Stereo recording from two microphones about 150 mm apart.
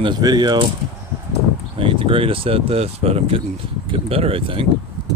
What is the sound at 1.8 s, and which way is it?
Speech, 35° right (ahead or behind).